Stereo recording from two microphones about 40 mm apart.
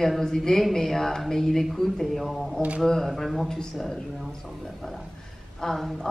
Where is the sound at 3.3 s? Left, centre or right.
Centre.